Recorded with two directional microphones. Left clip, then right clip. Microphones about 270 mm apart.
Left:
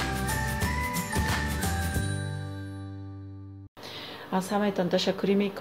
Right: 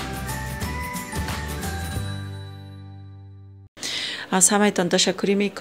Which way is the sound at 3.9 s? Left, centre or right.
Right.